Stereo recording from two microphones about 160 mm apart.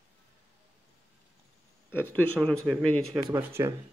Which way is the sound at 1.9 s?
10° left (ahead or behind).